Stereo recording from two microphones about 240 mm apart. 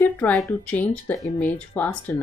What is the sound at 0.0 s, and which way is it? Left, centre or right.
Speech, centre.